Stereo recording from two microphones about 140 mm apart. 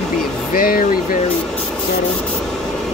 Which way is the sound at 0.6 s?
90° left.